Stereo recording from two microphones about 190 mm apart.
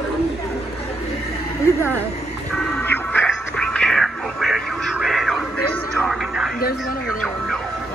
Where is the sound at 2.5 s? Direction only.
10° left (ahead or behind).